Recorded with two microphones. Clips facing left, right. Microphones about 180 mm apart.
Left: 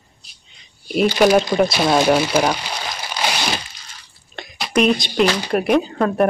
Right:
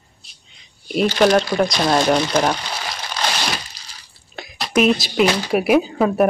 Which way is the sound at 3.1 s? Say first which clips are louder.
Left 1 dB; 10° left (ahead or behind).